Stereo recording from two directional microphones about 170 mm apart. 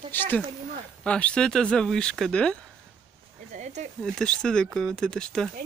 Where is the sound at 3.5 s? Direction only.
45° right (ahead or behind).